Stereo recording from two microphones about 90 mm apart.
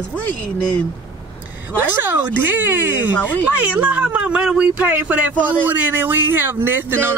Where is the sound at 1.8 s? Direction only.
20° right (ahead or behind).